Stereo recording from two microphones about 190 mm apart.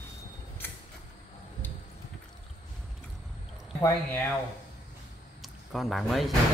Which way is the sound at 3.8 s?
15° left (ahead or behind).